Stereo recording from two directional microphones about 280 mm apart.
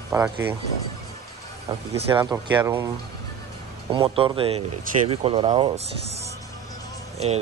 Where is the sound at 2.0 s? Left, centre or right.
Centre.